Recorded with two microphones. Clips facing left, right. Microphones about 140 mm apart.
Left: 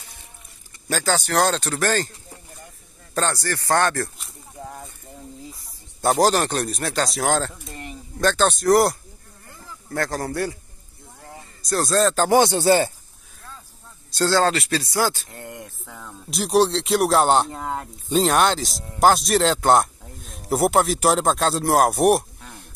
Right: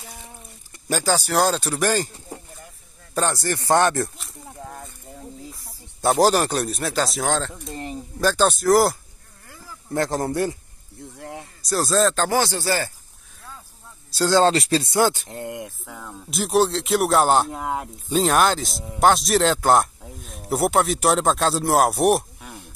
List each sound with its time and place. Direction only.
0.8 s speech: 10° right (ahead or behind)
3.2 s speech: 15° right (ahead or behind)
4.2 s a sound: centre (ahead or behind)
5.4 s speech: centre (ahead or behind)
7.7 s a sound: 35° right (ahead or behind)
8.2 s speech: 5° right (ahead or behind)
9.8 s speech: 20° right (ahead or behind)
11.1 s a sound: 75° right (ahead or behind)
11.7 s speech: centre (ahead or behind)
12.3 s speech: 20° left (ahead or behind)
14.1 s speech: 15° right (ahead or behind)
14.4 s speech: 30° right (ahead or behind); by 22.2 s centre (ahead or behind)
22.4 s a sound: 5° right (ahead or behind)